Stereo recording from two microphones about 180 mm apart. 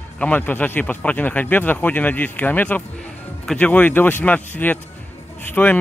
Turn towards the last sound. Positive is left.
turn(degrees=10)  # may be behind; listen again after turning